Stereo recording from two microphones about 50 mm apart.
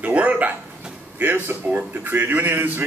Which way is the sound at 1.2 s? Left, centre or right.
Right.